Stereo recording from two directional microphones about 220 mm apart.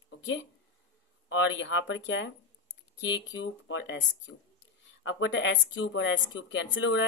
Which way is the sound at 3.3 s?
55° left (ahead or behind).